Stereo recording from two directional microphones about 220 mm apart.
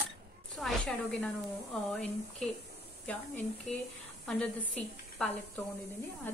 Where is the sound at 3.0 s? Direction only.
10° left (ahead or behind).